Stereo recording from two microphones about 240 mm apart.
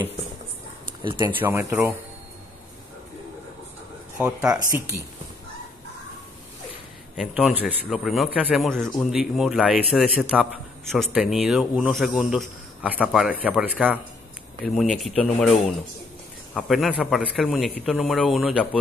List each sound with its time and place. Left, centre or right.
1.0 s speech: centre
4.2 s speech: centre
7.2 s speech: centre
16.5 s speech: centre